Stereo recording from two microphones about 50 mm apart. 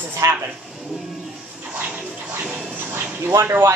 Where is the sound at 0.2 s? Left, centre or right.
Right.